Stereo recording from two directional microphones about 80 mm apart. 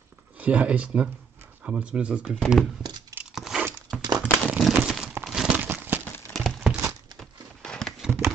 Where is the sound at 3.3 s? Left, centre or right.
Centre.